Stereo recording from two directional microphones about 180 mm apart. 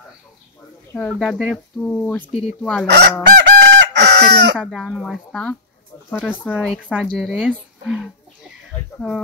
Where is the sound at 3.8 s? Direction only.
70° right (ahead or behind).